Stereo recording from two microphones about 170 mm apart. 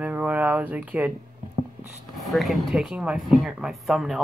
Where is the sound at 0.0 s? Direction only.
10° right (ahead or behind).